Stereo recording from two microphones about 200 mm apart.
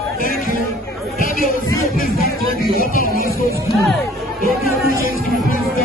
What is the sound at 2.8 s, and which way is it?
Music, 45° left (ahead or behind).